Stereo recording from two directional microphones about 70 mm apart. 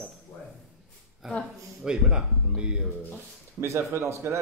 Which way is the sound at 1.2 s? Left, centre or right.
Centre.